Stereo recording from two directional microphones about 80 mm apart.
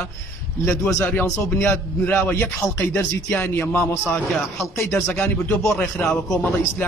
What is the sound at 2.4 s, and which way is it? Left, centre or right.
Speech, left.